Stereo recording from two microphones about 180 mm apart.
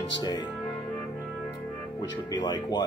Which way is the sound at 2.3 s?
25° left (ahead or behind).